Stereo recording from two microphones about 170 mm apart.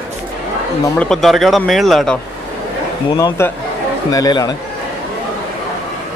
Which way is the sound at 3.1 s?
15° left (ahead or behind).